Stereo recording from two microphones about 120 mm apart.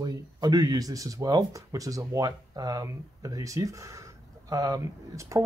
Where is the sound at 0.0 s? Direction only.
35° right (ahead or behind).